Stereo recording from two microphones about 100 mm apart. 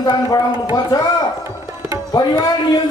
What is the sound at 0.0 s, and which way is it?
Speech, 45° left (ahead or behind).